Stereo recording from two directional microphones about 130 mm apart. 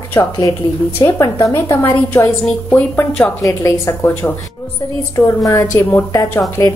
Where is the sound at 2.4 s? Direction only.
10° left (ahead or behind).